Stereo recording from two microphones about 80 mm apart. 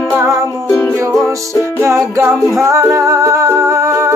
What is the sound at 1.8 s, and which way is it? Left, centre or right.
Music, right.